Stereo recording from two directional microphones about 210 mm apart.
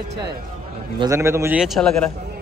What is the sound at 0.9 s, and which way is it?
Speech, 15° right (ahead or behind).